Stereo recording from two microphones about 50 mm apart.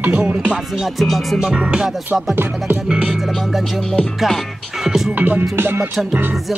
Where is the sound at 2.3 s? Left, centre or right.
Right.